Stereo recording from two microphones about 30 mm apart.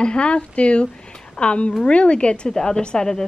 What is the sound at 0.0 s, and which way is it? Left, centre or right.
A woman's voice, left.